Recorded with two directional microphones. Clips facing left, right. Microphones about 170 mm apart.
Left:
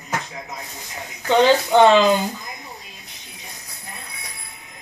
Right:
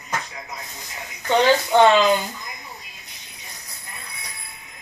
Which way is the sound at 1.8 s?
15° left (ahead or behind).